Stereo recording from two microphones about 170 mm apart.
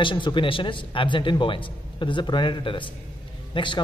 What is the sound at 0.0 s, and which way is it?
A man's voice, 30° left (ahead or behind).